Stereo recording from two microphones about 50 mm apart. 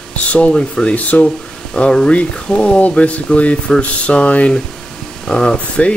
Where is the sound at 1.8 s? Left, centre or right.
Centre.